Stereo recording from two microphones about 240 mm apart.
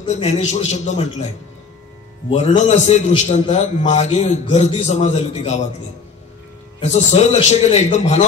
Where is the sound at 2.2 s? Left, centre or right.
Left.